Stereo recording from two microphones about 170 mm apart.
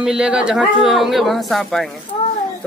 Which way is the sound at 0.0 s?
5° right (ahead or behind).